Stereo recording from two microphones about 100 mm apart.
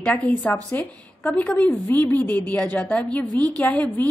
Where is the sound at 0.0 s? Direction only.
10° left (ahead or behind).